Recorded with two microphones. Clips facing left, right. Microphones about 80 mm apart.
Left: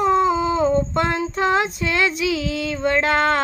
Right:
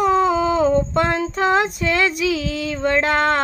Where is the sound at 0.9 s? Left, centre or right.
Right.